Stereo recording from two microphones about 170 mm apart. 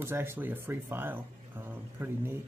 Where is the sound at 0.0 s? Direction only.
15° right (ahead or behind).